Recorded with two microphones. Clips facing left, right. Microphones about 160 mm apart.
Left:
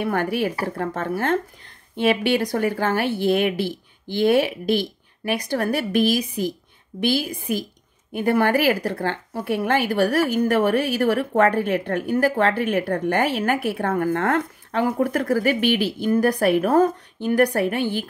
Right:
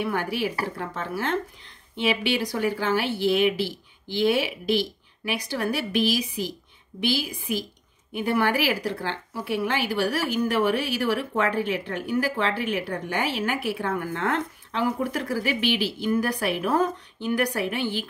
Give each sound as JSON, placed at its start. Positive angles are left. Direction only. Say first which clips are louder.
{"t": 0.0, "sound": "speech", "louder": "left 4 dB", "side_deg": 50}